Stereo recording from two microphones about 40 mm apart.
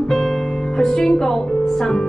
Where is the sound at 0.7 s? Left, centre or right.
Centre.